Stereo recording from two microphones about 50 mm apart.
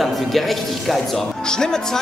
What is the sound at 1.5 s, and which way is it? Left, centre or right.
Speech, centre.